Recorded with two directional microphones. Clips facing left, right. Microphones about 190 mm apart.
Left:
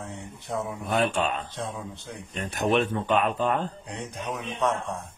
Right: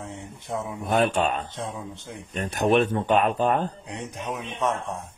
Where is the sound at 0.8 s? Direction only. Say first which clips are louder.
Right 4 dB; 40° right (ahead or behind).